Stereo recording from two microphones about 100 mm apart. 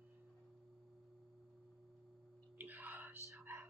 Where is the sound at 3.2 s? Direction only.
30° right (ahead or behind).